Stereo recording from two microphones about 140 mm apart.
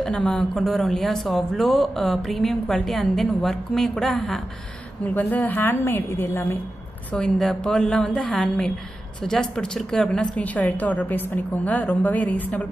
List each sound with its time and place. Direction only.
0.0 s a woman's voice: 10° left (ahead or behind)
7.1 s a woman's voice: 5° left (ahead or behind)